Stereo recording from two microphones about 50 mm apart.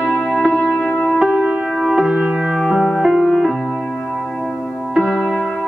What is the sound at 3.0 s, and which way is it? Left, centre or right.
Music, centre.